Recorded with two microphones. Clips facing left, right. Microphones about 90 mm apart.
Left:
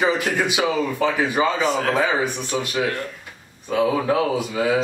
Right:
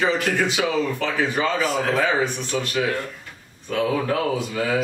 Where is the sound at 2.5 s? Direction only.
20° left (ahead or behind).